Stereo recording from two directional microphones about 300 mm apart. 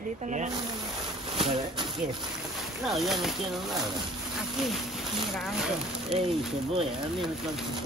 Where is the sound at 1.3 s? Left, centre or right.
Centre.